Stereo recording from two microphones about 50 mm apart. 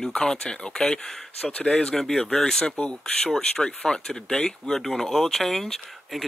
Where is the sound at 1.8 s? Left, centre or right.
Centre.